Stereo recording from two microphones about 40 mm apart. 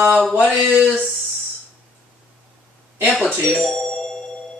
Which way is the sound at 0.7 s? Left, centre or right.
Right.